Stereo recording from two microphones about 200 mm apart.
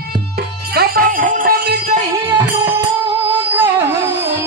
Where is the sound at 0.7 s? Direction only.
50° right (ahead or behind).